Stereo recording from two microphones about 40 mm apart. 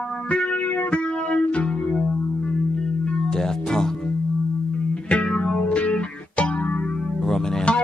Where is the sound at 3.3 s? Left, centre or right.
Centre.